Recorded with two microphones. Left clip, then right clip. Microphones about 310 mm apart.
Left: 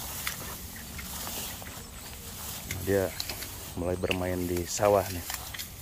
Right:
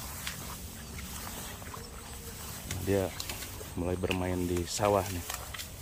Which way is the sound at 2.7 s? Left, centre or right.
Centre.